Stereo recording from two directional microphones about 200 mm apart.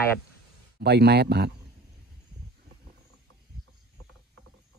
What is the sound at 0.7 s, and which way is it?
Speech, 55° right (ahead or behind).